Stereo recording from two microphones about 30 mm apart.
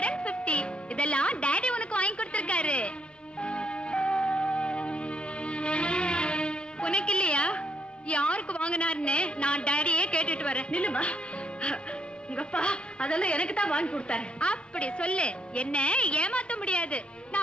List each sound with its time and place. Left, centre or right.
0.0 s music: left
8.1 s a woman's voice: left
12.4 s a woman's voice: left